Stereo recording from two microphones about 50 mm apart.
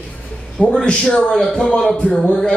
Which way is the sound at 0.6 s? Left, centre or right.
Centre.